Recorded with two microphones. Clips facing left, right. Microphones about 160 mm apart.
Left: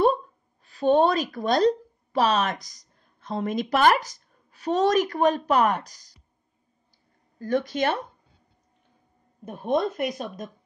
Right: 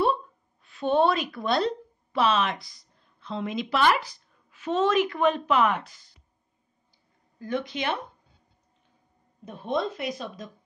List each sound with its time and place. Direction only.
0.0 s speech: 40° left (ahead or behind)
7.3 s speech: 45° left (ahead or behind)
9.4 s speech: 50° left (ahead or behind)